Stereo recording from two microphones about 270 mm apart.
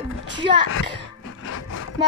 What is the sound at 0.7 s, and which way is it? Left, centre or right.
Cough, left.